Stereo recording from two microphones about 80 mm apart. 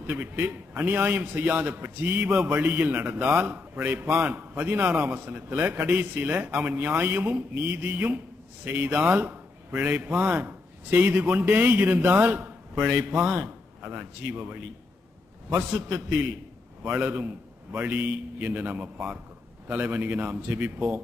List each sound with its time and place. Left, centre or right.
0.0 s a man's voice: right
15.7 s a man's voice: centre